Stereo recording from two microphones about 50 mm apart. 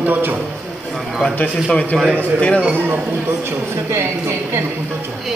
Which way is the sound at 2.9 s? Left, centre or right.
Right.